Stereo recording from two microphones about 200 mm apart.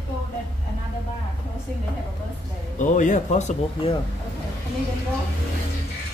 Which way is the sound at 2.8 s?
40° left (ahead or behind).